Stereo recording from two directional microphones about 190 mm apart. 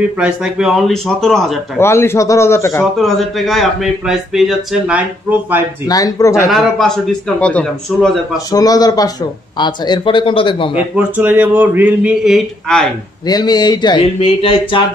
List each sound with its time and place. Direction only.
0.2 s speech: 5° right (ahead or behind)
1.8 s a man's voice: 15° left (ahead or behind)
3.0 s speech: centre (ahead or behind)
5.9 s speech: 20° left (ahead or behind)
6.5 s speech: centre (ahead or behind)
8.5 s speech: 20° left (ahead or behind)
11.0 s speech: 10° right (ahead or behind)
13.3 s speech: 20° left (ahead or behind)